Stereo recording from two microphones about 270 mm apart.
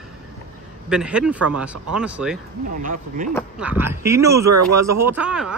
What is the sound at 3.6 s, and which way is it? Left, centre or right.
Speech, centre.